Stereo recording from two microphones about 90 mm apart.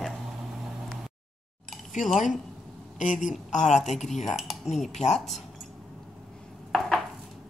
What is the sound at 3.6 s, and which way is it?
Speech, centre (ahead or behind).